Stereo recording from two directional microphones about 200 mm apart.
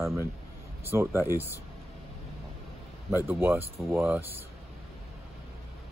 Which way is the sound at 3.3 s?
10° right (ahead or behind).